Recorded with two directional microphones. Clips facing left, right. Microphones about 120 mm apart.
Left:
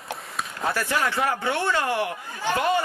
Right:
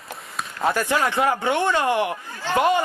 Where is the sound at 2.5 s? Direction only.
15° left (ahead or behind).